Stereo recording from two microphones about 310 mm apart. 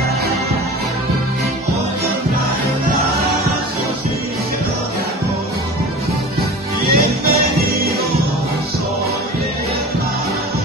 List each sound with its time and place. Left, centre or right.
6.9 s music: right